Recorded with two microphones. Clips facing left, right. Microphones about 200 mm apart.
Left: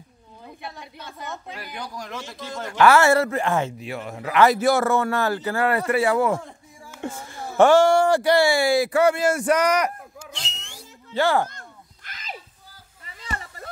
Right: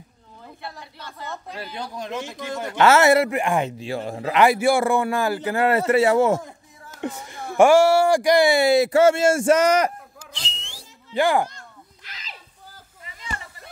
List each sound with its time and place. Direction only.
0.6 s a sound: 20° left (ahead or behind)
1.8 s a man's voice: 20° right (ahead or behind)
3.7 s speech: 30° right (ahead or behind)
4.4 s a man's voice: 10° right (ahead or behind)
10.4 s whistle: 30° right (ahead or behind)
11.1 s a man's voice: 15° right (ahead or behind)
11.5 s a sound: 50° left (ahead or behind)